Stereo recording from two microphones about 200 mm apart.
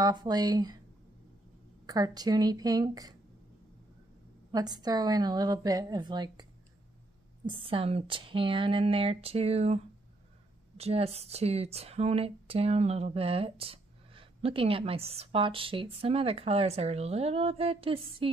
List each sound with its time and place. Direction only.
0.0 s speech: 20° right (ahead or behind)
1.9 s speech: 20° right (ahead or behind)
4.5 s speech: 20° right (ahead or behind)
7.4 s speech: 25° right (ahead or behind)
10.8 s speech: 30° right (ahead or behind)